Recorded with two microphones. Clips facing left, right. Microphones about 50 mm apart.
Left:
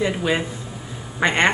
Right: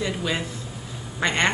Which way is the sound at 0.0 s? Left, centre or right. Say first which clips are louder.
Left 5 dB; centre.